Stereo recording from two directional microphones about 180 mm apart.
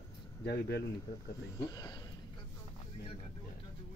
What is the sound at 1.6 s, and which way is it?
Speech, 20° left (ahead or behind).